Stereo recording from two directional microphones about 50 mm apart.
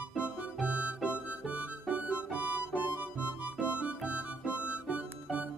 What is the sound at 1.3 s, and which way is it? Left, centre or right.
Harmonica, right.